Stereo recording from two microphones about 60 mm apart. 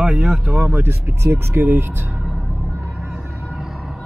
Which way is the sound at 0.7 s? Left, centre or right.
Right.